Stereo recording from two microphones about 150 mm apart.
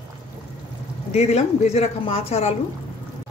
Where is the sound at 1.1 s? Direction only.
45° left (ahead or behind).